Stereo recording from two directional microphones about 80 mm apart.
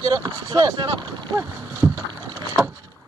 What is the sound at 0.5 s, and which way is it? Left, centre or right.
Speech, right.